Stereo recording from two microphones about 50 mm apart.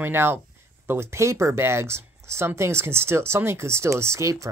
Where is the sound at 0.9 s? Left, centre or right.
Right.